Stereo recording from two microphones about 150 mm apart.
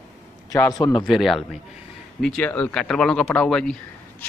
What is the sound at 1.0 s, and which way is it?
Speech, centre (ahead or behind).